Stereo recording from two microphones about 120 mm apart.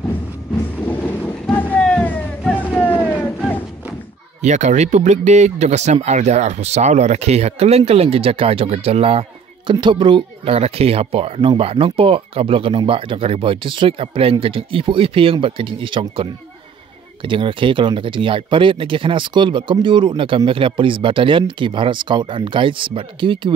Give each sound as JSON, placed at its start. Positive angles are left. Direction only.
{"t": 0.8, "sound": "vehicle", "side_deg": 15}
{"t": 2.8, "sound": "a sound", "side_deg": 15}
{"t": 4.4, "sound": "speech", "side_deg": -75}
{"t": 9.7, "sound": "speech", "side_deg": -45}